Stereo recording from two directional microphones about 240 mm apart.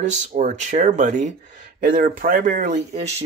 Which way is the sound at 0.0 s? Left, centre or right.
Right.